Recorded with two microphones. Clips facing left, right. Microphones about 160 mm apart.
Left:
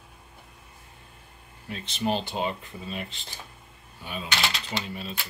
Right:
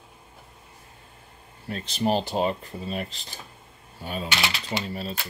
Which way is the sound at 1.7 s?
40° right (ahead or behind).